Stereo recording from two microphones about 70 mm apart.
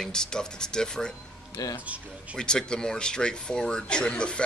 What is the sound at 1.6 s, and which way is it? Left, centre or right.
Speech, left.